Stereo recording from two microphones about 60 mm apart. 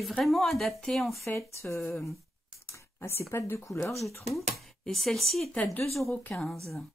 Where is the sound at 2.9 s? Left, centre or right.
Left.